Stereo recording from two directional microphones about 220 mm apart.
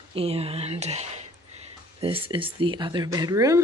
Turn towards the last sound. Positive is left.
turn(degrees=-15)  # may be behind; listen again after turning